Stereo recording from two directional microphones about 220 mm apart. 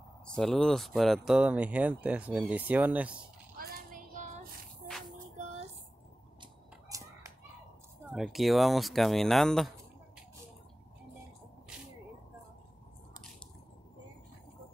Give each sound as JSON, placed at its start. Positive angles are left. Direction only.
{"t": 0.3, "sound": "speech", "side_deg": 0}
{"t": 3.5, "sound": "child singing", "side_deg": -40}
{"t": 5.4, "sound": "a sound", "side_deg": -30}
{"t": 6.9, "sound": "fowl", "side_deg": -15}
{"t": 8.1, "sound": "speech", "side_deg": 0}